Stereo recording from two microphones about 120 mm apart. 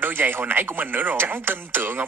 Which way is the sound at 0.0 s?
15° right (ahead or behind).